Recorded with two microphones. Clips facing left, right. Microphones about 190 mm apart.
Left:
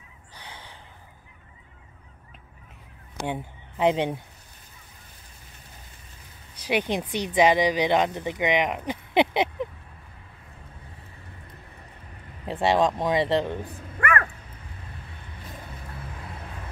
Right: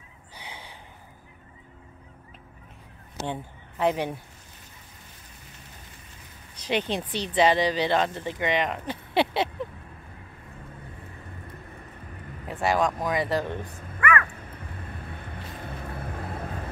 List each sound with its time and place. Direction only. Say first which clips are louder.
0.3 s gasp: right 1 dB; 10° right (ahead or behind)
3.2 s speech: left 2 dB; 15° left (ahead or behind)
6.6 s speech: left 2 dB; 10° left (ahead or behind)
12.4 s speech: left 3 dB; 30° left (ahead or behind)
13.9 s dog: right 1 dB; 45° left (ahead or behind)
15.2 s vehicle: right 1 dB; 55° right (ahead or behind)